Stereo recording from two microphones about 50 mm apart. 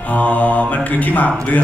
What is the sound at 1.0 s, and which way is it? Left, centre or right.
Speech, left.